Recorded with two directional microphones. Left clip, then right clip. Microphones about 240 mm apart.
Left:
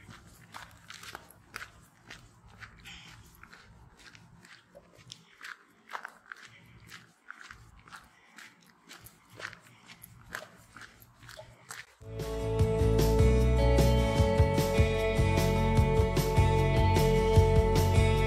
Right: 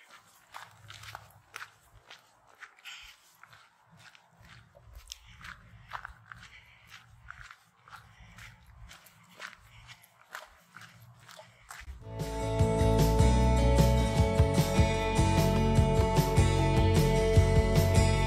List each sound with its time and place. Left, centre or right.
0.5 s walk: centre
2.8 s biting: right
5.1 s biting: right
5.9 s biting: centre
12.2 s music: centre